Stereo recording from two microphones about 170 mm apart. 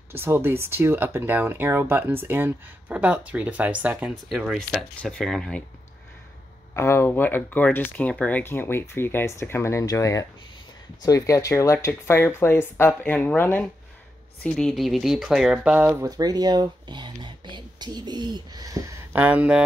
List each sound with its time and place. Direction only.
0.1 s speech: 15° right (ahead or behind); by 5.6 s 5° left (ahead or behind)
6.7 s speech: 15° left (ahead or behind); by 19.6 s 10° right (ahead or behind)